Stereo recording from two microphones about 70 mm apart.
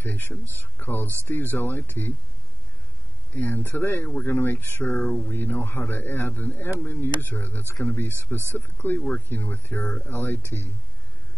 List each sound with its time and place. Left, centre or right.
0.0 s a man's voice: left
3.3 s a man's voice: left
8.7 s a man's voice: left